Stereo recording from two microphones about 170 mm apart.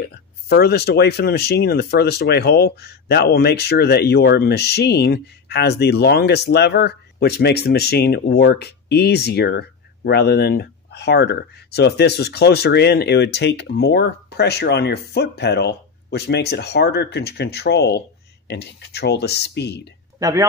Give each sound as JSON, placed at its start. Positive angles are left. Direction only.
{"t": 0.5, "sound": "speech", "side_deg": 70}
{"t": 20.2, "sound": "speech", "side_deg": -20}